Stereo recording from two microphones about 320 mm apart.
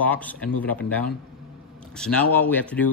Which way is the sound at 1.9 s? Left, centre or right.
Centre.